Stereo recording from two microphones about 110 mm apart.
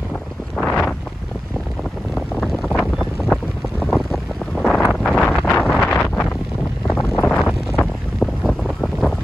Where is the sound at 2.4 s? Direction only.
Centre (ahead or behind).